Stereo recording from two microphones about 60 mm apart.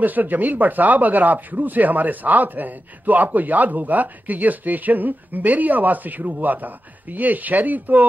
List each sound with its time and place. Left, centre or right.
0.0 s speech: right